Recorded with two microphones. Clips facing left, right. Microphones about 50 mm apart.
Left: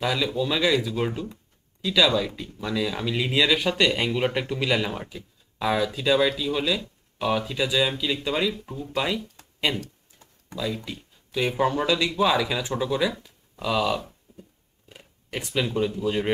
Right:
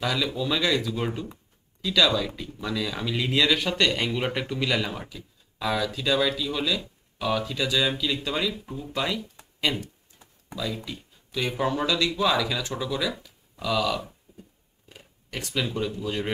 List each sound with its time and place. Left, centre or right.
0.0 s speech: centre
9.7 s speech: centre
10.9 s speech: centre
14.3 s a sound: centre
14.9 s a sound: centre
16.0 s speech: centre